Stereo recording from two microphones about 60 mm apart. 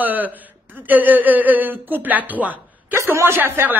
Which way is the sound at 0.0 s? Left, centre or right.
Right.